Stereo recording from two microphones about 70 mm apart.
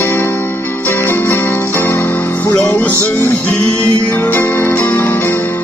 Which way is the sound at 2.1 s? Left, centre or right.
Left.